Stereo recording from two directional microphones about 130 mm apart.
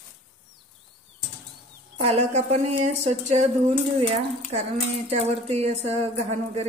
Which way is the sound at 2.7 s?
75° right (ahead or behind).